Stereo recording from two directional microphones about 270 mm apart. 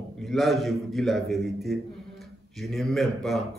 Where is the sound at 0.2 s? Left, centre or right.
Centre.